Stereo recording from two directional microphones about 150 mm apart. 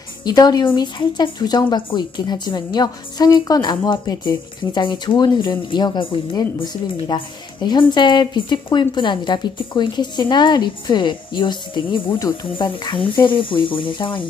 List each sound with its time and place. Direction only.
0.2 s a woman's voice: 25° left (ahead or behind)